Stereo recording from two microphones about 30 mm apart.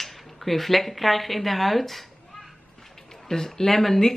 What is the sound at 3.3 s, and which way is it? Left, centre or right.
Speech, centre.